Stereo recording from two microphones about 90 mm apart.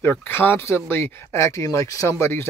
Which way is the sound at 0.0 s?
25° left (ahead or behind).